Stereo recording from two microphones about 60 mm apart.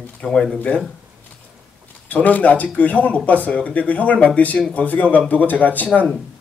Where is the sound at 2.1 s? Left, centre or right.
Left.